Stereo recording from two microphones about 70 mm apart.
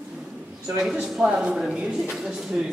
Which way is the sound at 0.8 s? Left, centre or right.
Centre.